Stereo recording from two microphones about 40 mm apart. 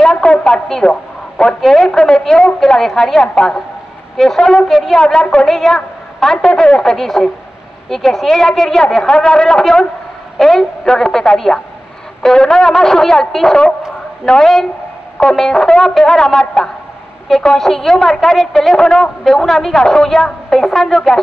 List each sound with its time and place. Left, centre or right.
0.0 s radio: left
0.8 s a man's voice: left
1.6 s a woman's voice: centre
1.9 s a man's voice: left
3.2 s a man's voice: left
4.2 s a woman's voice: centre
4.9 s a woman's voice: centre
17.6 s a woman's voice: centre
19.2 s a woman's voice: centre